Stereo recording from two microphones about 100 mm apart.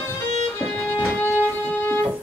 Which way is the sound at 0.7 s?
15° left (ahead or behind).